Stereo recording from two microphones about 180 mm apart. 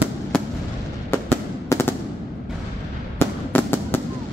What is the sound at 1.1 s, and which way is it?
Fireworks, 10° left (ahead or behind).